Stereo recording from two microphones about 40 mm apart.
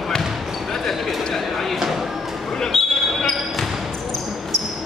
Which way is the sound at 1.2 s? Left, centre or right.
Centre.